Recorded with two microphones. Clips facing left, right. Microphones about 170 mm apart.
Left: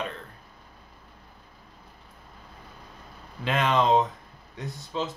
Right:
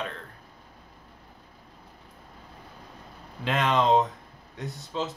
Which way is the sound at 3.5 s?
Centre (ahead or behind).